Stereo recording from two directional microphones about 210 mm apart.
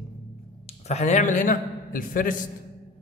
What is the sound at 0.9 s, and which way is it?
A man's voice, 35° left (ahead or behind).